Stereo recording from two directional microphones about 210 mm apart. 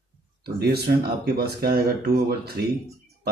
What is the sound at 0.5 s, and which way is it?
Speech, 50° right (ahead or behind).